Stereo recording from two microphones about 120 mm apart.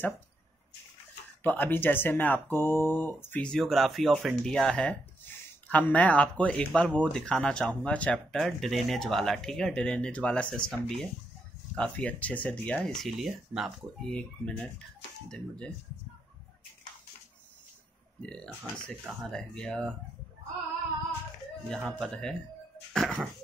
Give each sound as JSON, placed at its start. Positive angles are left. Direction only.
{"t": 1.4, "sound": "speech", "side_deg": 15}
{"t": 3.4, "sound": "speech", "side_deg": 5}
{"t": 14.0, "sound": "speech", "side_deg": 10}
{"t": 18.2, "sound": "speech", "side_deg": 5}
{"t": 21.6, "sound": "speech", "side_deg": 5}